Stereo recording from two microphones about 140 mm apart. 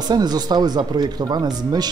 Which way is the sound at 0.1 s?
30° right (ahead or behind).